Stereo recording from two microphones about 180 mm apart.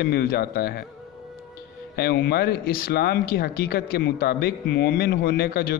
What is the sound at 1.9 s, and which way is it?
Speech, 60° left (ahead or behind).